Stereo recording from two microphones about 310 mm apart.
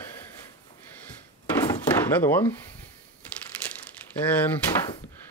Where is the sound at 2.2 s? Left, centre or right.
Centre.